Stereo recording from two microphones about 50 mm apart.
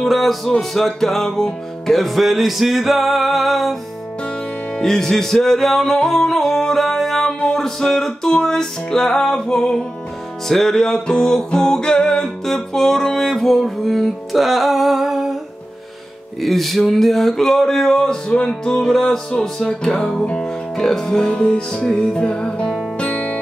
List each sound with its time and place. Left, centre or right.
0.0 s music: centre
4.7 s music: centre
16.3 s music: centre; by 23.4 s left